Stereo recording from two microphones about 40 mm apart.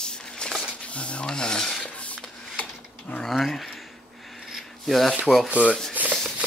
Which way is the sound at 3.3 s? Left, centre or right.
Centre.